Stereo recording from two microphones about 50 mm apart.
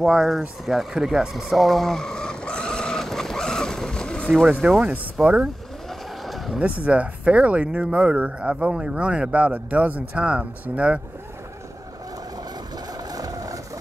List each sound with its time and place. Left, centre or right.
0.0 s speech: centre
1.3 s vehicle: centre
4.5 s speech: centre
4.7 s speech: right
5.2 s speech: centre
6.2 s a sound: centre
6.6 s speech: right